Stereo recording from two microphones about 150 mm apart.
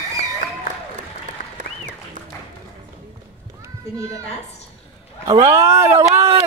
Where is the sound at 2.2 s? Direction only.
55° right (ahead or behind).